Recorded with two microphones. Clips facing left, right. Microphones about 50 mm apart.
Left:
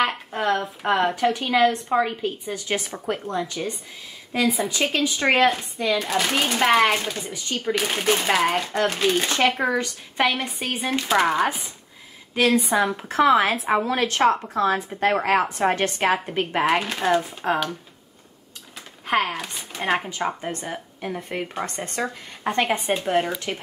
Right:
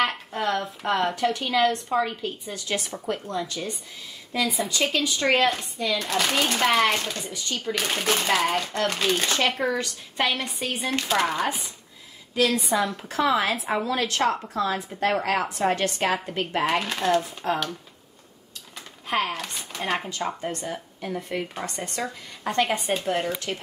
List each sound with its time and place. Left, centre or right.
0.0 s a woman's voice: centre
12.5 s speech: left
17.0 s speech: centre
19.0 s a woman's voice: centre
21.3 s speech: left
22.5 s a woman's voice: left